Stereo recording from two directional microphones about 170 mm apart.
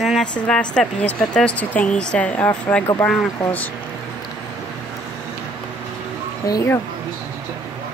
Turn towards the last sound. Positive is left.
turn(degrees=20)  # may be behind; listen again after turning